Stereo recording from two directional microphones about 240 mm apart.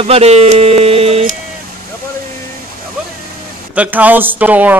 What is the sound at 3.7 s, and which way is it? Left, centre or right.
Speech, centre.